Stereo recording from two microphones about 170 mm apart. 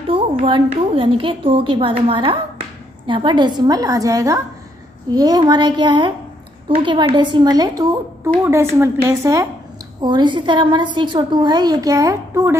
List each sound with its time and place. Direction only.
0.1 s a woman's voice: 30° right (ahead or behind)